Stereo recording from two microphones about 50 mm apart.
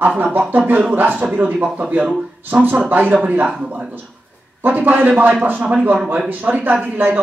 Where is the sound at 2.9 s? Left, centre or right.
Right.